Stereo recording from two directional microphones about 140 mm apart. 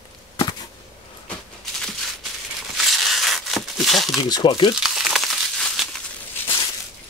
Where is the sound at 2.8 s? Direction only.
Centre (ahead or behind).